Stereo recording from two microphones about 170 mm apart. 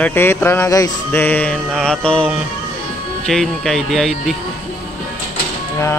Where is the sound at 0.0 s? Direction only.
15° left (ahead or behind).